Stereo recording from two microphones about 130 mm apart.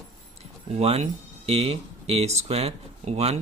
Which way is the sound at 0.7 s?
55° right (ahead or behind).